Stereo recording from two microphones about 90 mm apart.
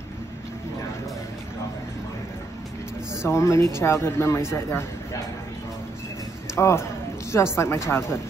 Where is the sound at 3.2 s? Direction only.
35° left (ahead or behind).